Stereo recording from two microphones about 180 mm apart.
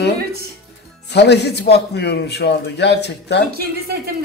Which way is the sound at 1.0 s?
70° left (ahead or behind).